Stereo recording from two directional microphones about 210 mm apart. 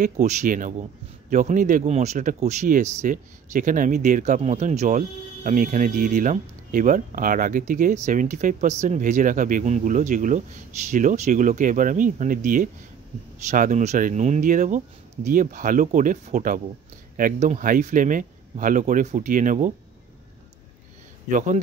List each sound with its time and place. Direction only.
0.0 s speech: 35° right (ahead or behind)
21.3 s speech: 35° right (ahead or behind)